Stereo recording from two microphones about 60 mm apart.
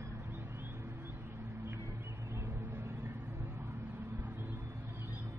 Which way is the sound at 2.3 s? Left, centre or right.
Right.